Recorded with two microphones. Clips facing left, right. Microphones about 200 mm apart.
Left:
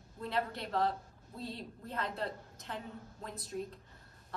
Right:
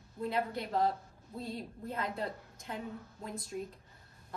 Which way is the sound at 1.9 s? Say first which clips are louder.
Right 1 dB; 5° right (ahead or behind).